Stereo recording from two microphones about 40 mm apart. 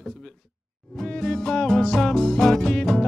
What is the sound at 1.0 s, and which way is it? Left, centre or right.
Music, centre.